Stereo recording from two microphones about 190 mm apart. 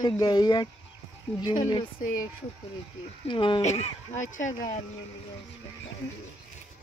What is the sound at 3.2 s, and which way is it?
Speech, 25° left (ahead or behind).